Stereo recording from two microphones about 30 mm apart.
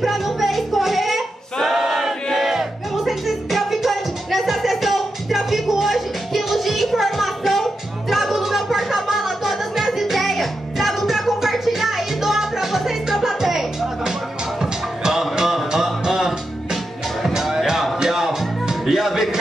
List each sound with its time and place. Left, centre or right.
0.0 s singing: centre
2.3 s music: centre